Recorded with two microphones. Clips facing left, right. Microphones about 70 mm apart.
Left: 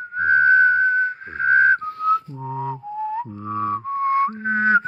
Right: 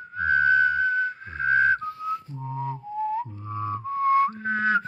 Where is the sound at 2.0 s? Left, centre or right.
Left.